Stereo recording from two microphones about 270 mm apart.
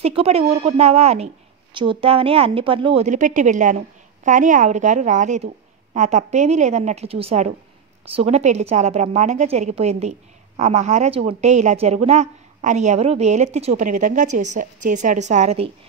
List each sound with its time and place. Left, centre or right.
0.0 s a woman's voice: right